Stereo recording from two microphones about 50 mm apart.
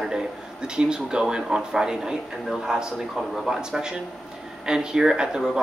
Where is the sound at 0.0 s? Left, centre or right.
Centre.